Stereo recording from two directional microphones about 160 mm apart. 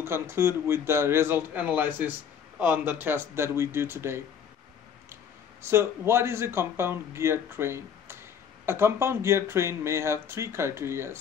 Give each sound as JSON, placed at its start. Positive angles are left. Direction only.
{"t": 0.0, "sound": "speech", "side_deg": -15}